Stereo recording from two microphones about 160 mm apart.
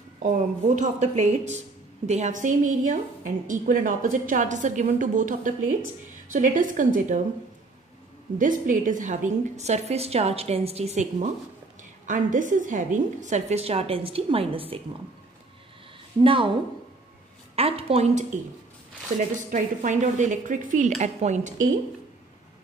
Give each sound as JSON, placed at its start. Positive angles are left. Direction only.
{"t": 0.7, "sound": "a woman's voice", "side_deg": -45}
{"t": 8.4, "sound": "a woman's voice", "side_deg": -55}
{"t": 16.2, "sound": "a woman's voice", "side_deg": -30}
{"t": 17.6, "sound": "a woman's voice", "side_deg": -35}